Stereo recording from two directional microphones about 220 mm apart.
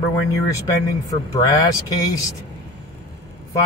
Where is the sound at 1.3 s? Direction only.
15° left (ahead or behind).